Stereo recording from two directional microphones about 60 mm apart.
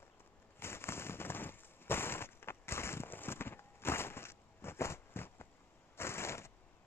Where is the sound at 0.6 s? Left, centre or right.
Left.